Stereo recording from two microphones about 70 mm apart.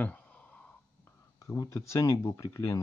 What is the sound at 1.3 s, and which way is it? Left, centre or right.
Speech, left.